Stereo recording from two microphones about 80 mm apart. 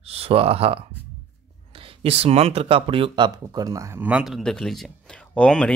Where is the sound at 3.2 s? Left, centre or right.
Right.